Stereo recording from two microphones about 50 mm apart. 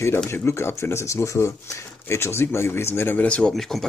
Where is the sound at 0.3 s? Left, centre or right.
Left.